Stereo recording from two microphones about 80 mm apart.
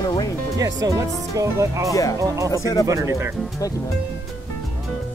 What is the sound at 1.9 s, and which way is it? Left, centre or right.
Speech, left.